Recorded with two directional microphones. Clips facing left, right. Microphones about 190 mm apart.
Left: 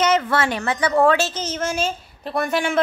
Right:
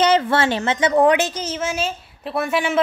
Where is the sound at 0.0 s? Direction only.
30° right (ahead or behind).